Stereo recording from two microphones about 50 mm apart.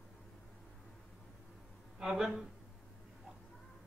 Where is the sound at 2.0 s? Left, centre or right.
Centre.